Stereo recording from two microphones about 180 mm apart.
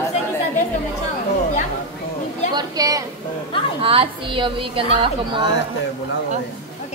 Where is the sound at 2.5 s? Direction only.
20° right (ahead or behind).